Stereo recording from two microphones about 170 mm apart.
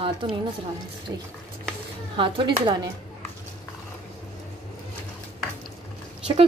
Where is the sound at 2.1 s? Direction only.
30° right (ahead or behind).